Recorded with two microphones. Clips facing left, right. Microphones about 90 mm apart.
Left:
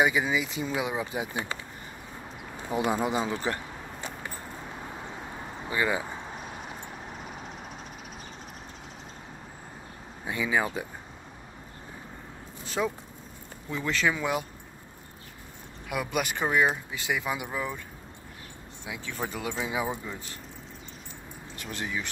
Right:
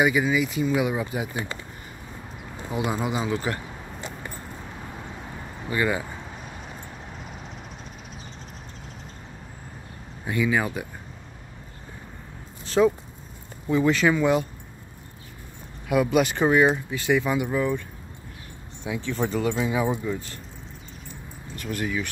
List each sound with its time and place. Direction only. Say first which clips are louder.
0.0 s speech: right 3 dB; 25° left (ahead or behind)
2.7 s speech: even; 35° left (ahead or behind)
5.7 s speech: right 3 dB; 15° left (ahead or behind)
10.2 s speech: right 4 dB; 20° left (ahead or behind)
12.6 s a sound: right 10 dB; 5° left (ahead or behind)
13.7 s speech: right 8 dB; 10° right (ahead or behind)
14.1 s speech: right 8 dB; 5° left (ahead or behind)
15.9 s speech: right 9 dB; centre (ahead or behind)
16.9 s speech: right 8 dB; 15° left (ahead or behind)
18.9 s speech: right 8 dB; 5° left (ahead or behind)
21.5 s speech: right 6 dB; 20° left (ahead or behind)